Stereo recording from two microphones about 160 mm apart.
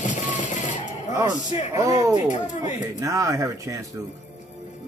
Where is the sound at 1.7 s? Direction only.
20° right (ahead or behind).